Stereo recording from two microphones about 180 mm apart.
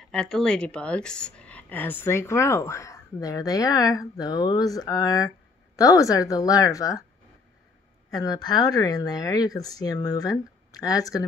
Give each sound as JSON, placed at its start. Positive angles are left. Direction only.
{"t": 0.0, "sound": "a woman's voice", "side_deg": 0}
{"t": 8.1, "sound": "speech", "side_deg": 20}